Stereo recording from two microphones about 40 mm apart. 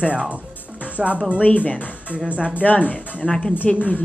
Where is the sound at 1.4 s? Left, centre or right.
Left.